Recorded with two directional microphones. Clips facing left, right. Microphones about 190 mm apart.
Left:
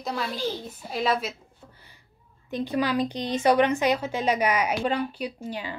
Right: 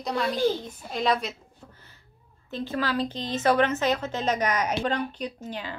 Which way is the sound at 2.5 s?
15° left (ahead or behind).